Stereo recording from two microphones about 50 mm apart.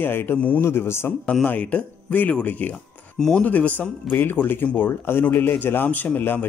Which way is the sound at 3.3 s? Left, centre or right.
Left.